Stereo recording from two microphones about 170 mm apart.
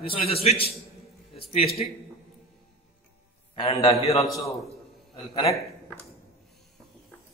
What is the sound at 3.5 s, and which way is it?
Speech, 30° left (ahead or behind).